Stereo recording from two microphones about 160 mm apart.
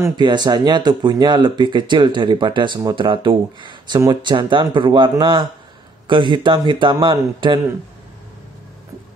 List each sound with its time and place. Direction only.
0.0 s speech: 25° right (ahead or behind)